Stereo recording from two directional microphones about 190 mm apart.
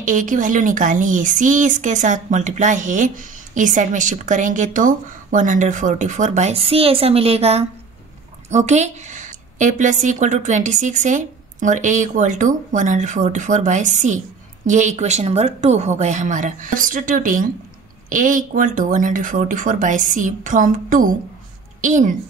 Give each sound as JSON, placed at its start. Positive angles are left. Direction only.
{"t": 0.0, "sound": "a woman's voice", "side_deg": -45}